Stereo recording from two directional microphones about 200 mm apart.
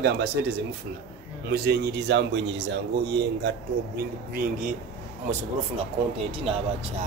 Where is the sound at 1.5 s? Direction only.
55° right (ahead or behind).